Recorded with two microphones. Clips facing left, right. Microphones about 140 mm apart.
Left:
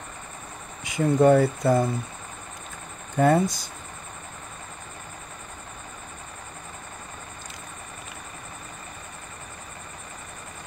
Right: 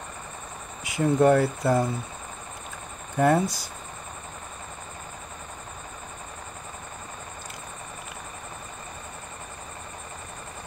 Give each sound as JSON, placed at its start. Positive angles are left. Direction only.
{"t": 0.8, "sound": "speech", "side_deg": -5}
{"t": 3.2, "sound": "speech", "side_deg": 0}